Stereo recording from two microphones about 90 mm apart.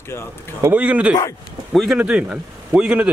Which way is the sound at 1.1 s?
45° left (ahead or behind).